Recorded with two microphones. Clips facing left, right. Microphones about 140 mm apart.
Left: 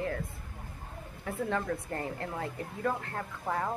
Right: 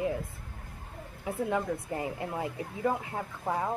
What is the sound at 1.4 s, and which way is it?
Speech, 15° right (ahead or behind).